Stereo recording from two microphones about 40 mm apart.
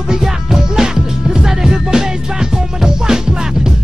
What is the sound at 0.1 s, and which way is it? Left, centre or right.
Music, centre.